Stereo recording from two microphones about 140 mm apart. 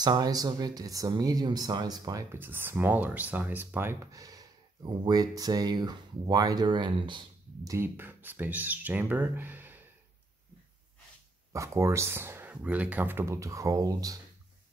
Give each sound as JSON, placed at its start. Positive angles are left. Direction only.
{"t": 0.0, "sound": "speech", "side_deg": -30}
{"t": 2.3, "sound": "speech", "side_deg": -15}
{"t": 7.7, "sound": "speech", "side_deg": -15}
{"t": 11.5, "sound": "speech", "side_deg": -20}